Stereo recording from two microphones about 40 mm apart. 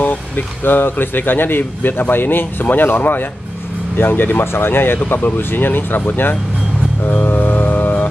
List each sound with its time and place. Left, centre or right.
0.7 s speech: left
7.2 s music: left